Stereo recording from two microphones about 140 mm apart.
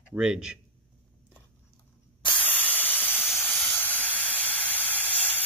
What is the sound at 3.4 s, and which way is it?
Steam, 10° left (ahead or behind).